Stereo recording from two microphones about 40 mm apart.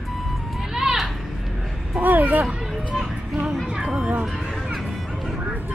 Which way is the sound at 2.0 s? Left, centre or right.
Right.